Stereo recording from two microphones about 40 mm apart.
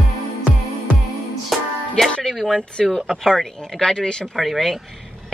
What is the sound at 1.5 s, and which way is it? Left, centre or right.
Music, centre.